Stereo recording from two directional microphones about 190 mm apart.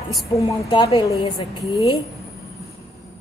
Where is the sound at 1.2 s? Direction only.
30° left (ahead or behind).